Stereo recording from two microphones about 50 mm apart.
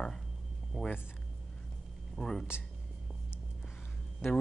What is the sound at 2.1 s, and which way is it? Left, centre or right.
Speech, centre.